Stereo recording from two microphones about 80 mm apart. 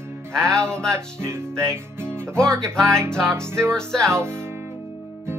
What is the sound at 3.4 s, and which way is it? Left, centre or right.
Music, right.